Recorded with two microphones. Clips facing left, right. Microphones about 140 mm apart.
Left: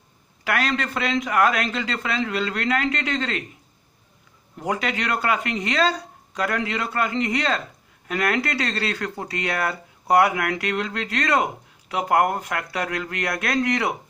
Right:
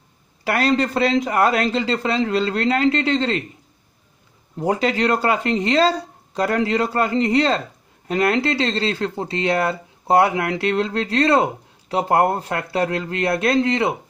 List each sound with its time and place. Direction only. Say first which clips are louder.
0.4 s a man's voice: right 6 dB; 35° right (ahead or behind)
4.6 s a man's voice: right 6 dB; 30° right (ahead or behind)